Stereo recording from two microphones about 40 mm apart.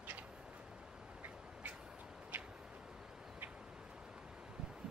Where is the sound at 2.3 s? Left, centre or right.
Right.